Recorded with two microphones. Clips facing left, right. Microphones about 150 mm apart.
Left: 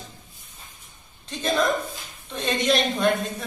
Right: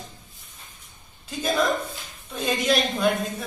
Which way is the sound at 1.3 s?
5° right (ahead or behind).